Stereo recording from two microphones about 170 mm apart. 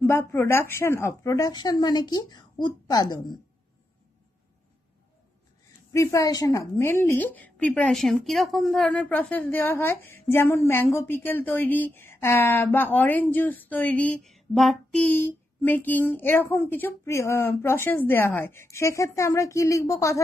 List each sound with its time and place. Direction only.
0.0 s speech: 15° left (ahead or behind)
5.9 s a woman's voice: 20° left (ahead or behind)